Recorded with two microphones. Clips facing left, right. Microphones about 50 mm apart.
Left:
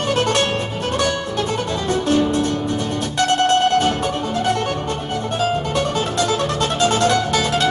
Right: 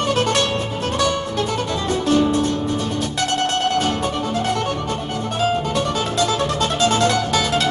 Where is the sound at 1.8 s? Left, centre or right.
Left.